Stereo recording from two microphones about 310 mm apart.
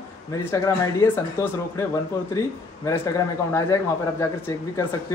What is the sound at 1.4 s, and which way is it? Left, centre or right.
Speech, centre.